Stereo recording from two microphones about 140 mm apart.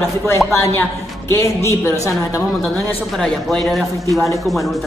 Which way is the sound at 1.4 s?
20° left (ahead or behind).